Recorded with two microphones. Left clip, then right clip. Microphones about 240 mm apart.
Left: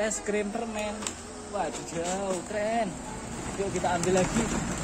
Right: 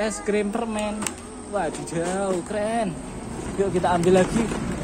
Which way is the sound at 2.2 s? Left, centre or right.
Centre.